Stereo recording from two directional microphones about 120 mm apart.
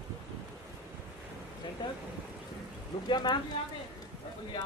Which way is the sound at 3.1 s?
40° left (ahead or behind).